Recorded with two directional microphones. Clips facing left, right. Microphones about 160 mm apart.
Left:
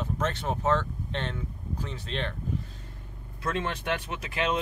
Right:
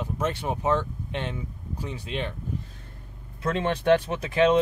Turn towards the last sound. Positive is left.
turn(degrees=-30)  # may be behind; listen again after turning